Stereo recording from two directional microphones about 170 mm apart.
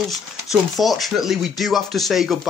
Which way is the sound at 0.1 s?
Centre (ahead or behind).